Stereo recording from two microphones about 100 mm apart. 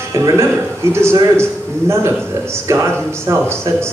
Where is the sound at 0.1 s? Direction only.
30° right (ahead or behind).